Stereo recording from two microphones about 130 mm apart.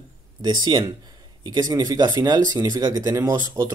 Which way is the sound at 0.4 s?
35° right (ahead or behind).